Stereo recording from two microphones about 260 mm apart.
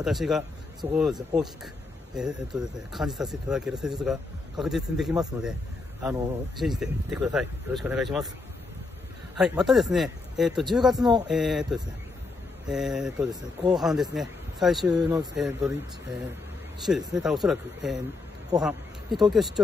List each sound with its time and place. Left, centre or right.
0.0 s speech: centre
6.6 s speech: centre
9.7 s speech: centre
15.0 s speech: centre
15.3 s speech: centre